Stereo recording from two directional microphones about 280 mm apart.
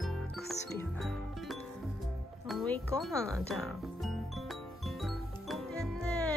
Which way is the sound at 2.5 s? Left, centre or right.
Centre.